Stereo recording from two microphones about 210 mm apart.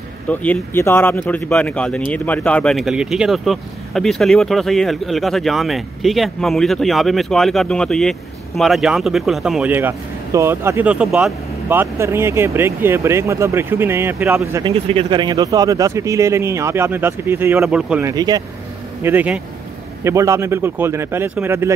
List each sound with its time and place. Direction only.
0.3 s speech: 10° left (ahead or behind); by 14.7 s 15° right (ahead or behind)
14.9 s speech: 25° right (ahead or behind); by 18.0 s 5° right (ahead or behind)
18.0 s speech: 20° right (ahead or behind)
19.0 s speech: 5° right (ahead or behind)